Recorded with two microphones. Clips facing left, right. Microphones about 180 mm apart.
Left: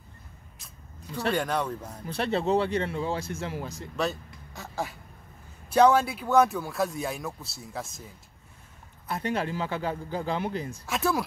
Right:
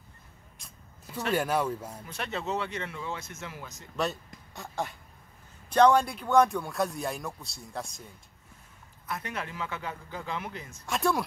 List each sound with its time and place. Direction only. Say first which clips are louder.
1.3 s speech: right 2 dB; 5° right (ahead or behind)
2.0 s a man's voice: left 8 dB; 35° left (ahead or behind)
3.9 s speech: left 1 dB; centre (ahead or behind)
9.0 s a man's voice: left 7 dB; 30° left (ahead or behind)
10.9 s speech: even; centre (ahead or behind)